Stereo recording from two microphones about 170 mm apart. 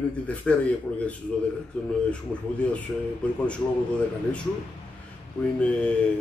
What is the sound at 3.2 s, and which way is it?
Speech, 5° left (ahead or behind).